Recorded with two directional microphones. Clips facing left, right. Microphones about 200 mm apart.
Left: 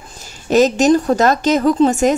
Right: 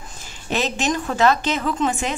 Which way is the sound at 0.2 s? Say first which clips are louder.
Left 12 dB; 40° left (ahead or behind).